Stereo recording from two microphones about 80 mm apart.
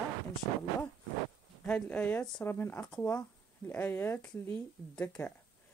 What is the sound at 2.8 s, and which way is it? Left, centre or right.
Speech, centre.